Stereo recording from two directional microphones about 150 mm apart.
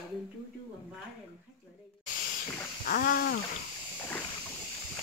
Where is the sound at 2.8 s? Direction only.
70° left (ahead or behind).